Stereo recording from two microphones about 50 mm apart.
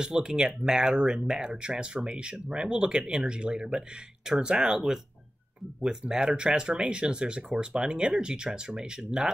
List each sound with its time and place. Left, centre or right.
0.0 s speech: centre